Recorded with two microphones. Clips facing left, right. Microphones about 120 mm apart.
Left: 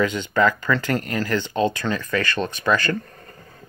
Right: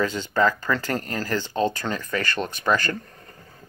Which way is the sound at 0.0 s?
35° right (ahead or behind).